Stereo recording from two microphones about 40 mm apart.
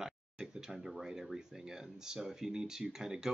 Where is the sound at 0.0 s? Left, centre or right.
Centre.